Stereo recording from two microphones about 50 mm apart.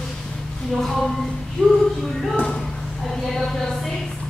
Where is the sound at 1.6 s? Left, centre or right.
Centre.